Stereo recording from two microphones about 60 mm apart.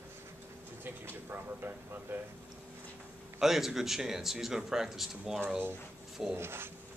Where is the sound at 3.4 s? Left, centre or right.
Centre.